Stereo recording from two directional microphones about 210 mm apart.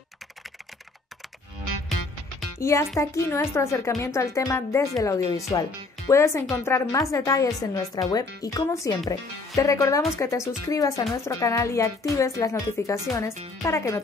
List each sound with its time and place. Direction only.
2.6 s speech: 15° left (ahead or behind)